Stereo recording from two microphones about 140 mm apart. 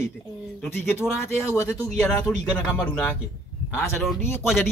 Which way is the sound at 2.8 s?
10° left (ahead or behind).